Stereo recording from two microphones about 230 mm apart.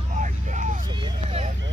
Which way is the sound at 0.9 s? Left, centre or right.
Centre.